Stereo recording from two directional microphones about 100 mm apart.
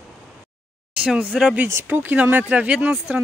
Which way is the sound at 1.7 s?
20° right (ahead or behind).